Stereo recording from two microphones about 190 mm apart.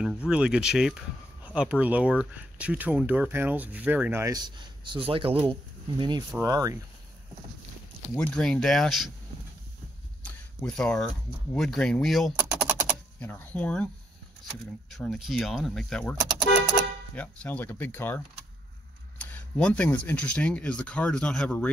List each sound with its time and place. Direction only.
0.3 s speech: 5° right (ahead or behind)
8.1 s speech: 5° left (ahead or behind)
10.2 s a sound: 5° left (ahead or behind)
11.5 s speech: 5° left (ahead or behind)
12.4 s typing: 10° right (ahead or behind)
13.2 s speech: 10° left (ahead or behind)
14.9 s speech: centre (ahead or behind)
19.2 s speech: 5° left (ahead or behind)